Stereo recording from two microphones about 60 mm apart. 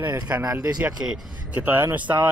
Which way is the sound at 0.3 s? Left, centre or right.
Right.